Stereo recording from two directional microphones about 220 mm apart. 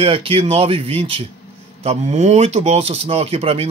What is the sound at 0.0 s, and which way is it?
Speech, 25° right (ahead or behind).